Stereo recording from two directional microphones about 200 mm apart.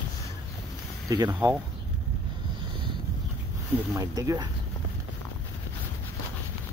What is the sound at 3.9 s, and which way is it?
Speech, 15° right (ahead or behind).